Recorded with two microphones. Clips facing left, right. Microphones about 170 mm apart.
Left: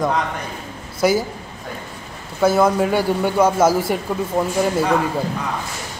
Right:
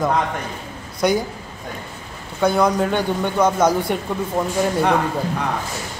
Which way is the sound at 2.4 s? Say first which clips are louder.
Left 2 dB; 5° left (ahead or behind).